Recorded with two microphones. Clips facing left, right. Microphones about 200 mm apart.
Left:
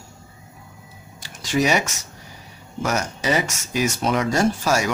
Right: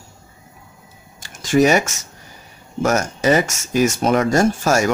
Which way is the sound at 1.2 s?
50° right (ahead or behind).